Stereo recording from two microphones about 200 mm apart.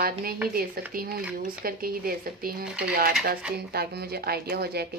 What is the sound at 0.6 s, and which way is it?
Speech, 45° right (ahead or behind).